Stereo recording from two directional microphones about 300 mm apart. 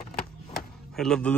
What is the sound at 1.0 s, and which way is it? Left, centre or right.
Speech, centre.